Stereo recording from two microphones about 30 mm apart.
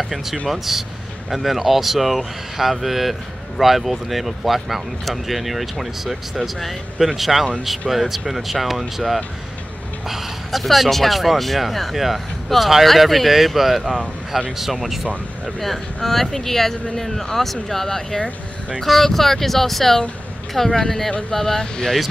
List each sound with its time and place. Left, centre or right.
0.0 s speech: centre
15.6 s speech: centre